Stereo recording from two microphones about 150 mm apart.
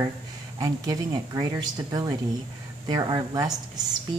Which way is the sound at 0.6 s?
25° right (ahead or behind).